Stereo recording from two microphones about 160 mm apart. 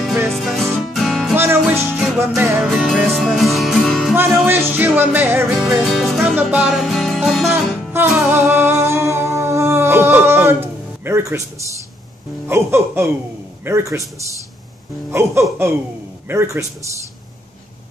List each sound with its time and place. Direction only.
0.3 s music: centre (ahead or behind)
4.5 s music: 10° right (ahead or behind)
7.5 s music: 10° right (ahead or behind)
12.4 s a man's voice: 15° right (ahead or behind)
15.0 s a man's voice: 15° right (ahead or behind)